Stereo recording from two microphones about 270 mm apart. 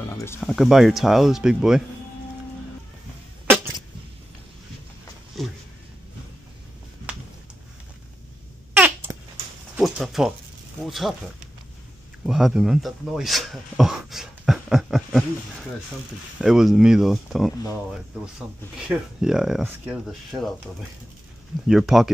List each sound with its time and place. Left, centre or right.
0.2 s speech: centre
8.7 s babbling: centre
9.8 s a sound: centre
10.8 s speech: centre
16.3 s speech: centre
21.6 s speech: centre